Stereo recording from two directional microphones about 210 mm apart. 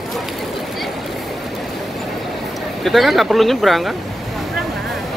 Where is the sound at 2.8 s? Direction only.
Centre (ahead or behind).